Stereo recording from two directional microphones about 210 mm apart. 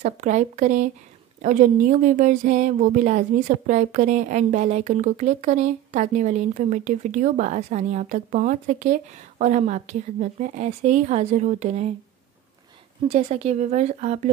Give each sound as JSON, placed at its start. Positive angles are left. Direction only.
{"t": 0.0, "sound": "speech", "side_deg": -35}
{"t": 13.1, "sound": "speech", "side_deg": -30}